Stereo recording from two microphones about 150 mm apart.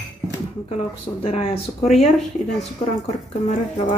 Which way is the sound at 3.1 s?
50° left (ahead or behind).